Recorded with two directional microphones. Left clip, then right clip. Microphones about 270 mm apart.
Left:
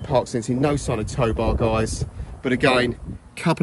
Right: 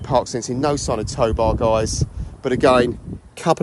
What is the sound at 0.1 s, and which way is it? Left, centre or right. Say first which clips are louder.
Speech: right 2 dB; centre.